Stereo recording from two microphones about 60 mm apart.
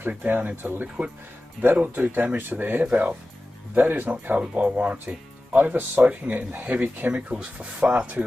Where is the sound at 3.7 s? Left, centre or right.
Right.